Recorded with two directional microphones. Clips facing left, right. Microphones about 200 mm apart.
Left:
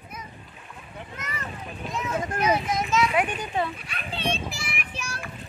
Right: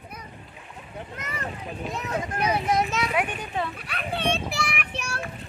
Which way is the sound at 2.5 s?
60° right (ahead or behind).